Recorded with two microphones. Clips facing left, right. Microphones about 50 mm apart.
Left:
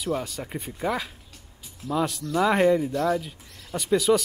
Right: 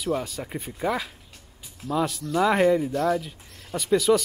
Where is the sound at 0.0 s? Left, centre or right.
Centre.